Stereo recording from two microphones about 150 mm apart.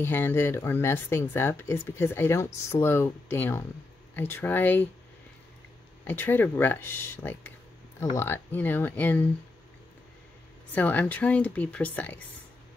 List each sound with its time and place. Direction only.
0.0 s speech: 15° left (ahead or behind)
6.0 s speech: 15° left (ahead or behind)
10.7 s speech: 10° left (ahead or behind)